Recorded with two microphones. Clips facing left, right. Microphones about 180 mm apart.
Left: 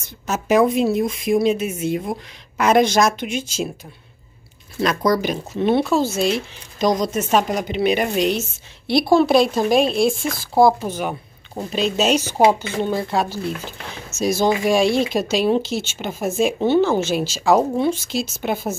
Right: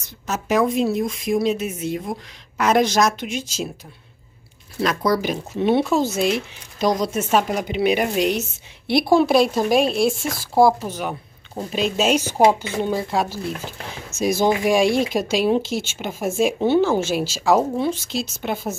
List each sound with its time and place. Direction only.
0.3 s a woman's voice: 5° left (ahead or behind)
3.3 s speech: 55° left (ahead or behind)
4.8 s a woman's voice: 5° right (ahead or behind)